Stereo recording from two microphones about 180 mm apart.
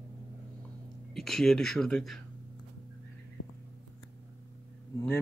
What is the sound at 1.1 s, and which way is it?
Speech, centre (ahead or behind).